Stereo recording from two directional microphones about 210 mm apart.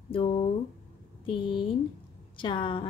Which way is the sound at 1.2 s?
25° left (ahead or behind).